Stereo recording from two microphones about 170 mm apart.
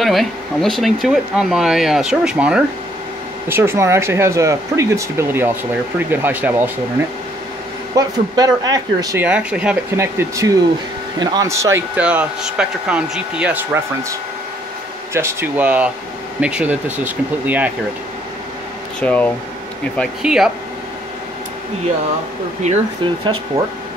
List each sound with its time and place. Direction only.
0.0 s speech: centre (ahead or behind)
7.9 s speech: 20° right (ahead or behind)
9.2 s speech: 5° right (ahead or behind)
15.1 s speech: 15° right (ahead or behind)
18.9 s speech: 10° left (ahead or behind)
20.0 s speech: centre (ahead or behind)